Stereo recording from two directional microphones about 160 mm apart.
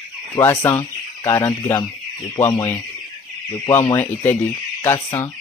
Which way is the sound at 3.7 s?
15° left (ahead or behind).